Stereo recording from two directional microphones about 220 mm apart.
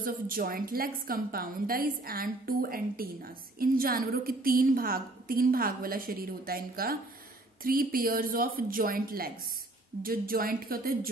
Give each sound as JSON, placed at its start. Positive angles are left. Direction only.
{"t": 0.0, "sound": "a woman's voice", "side_deg": -40}